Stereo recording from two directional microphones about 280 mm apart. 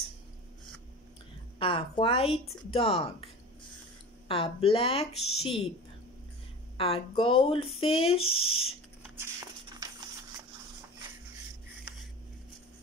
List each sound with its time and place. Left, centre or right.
1.6 s speech: centre
4.3 s speech: centre
6.8 s speech: centre
8.2 s speech: left
9.0 s a sound: centre